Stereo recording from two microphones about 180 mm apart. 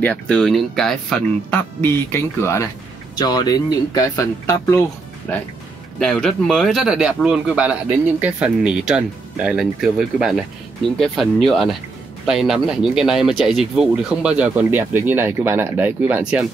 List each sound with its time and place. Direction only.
0.0 s a man's voice: 5° left (ahead or behind)